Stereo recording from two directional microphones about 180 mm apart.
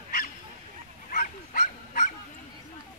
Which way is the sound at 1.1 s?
50° left (ahead or behind).